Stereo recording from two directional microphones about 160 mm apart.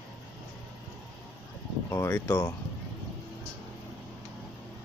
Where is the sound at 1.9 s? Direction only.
15° left (ahead or behind).